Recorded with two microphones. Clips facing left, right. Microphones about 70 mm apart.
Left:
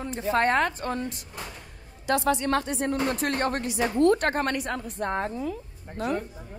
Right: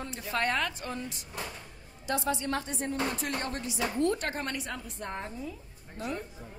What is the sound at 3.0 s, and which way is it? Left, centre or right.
A woman's voice, left.